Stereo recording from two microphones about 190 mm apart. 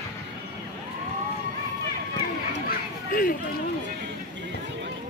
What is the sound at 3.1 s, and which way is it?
Speech, 50° left (ahead or behind).